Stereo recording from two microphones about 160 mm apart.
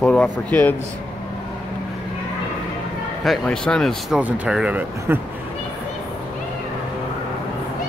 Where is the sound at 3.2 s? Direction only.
5° left (ahead or behind); by 5.2 s 10° right (ahead or behind).